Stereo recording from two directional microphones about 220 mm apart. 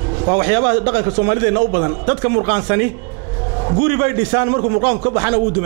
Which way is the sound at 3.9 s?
15° right (ahead or behind).